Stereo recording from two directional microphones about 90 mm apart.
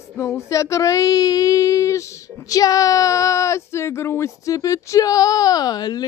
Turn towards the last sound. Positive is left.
turn(degrees=45)  # may be behind; listen again after turning